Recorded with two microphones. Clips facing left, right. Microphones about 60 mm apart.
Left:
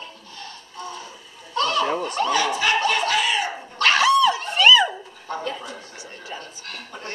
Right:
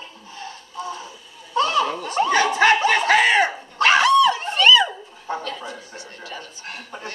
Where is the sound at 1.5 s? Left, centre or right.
Centre.